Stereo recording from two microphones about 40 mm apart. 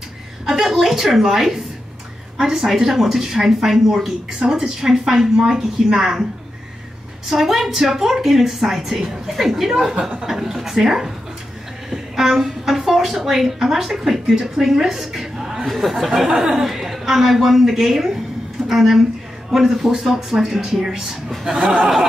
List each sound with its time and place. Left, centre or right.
0.5 s speech: centre
7.2 s speech: centre
21.5 s speech: right